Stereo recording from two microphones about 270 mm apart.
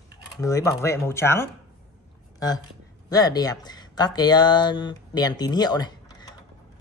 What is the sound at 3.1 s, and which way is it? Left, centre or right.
Speech, centre.